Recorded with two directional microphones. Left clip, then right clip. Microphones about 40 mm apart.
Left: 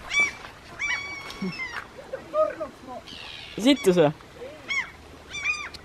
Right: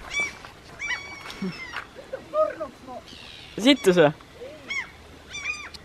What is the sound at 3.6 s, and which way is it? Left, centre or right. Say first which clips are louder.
Speech: right 2 dB; right.